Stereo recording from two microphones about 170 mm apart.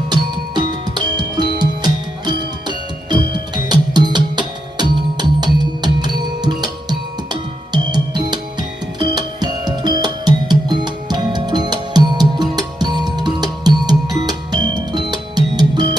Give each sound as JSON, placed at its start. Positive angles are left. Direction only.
{"t": 0.1, "sound": "music", "side_deg": -25}